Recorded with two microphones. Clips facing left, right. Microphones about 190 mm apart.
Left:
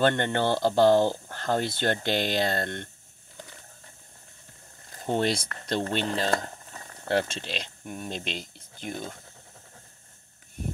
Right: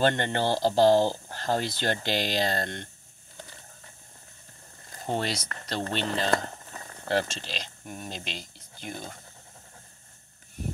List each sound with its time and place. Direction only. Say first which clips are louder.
0.0 s speech: left 1 dB; 55° left (ahead or behind)
5.2 s speech: left 5 dB; 50° left (ahead or behind)
7.8 s speech: left 3 dB; centre (ahead or behind)
8.1 s speech: left 4 dB; 55° left (ahead or behind)